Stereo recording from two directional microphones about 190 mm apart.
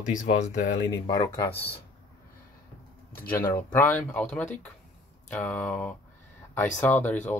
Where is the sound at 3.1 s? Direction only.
50° left (ahead or behind).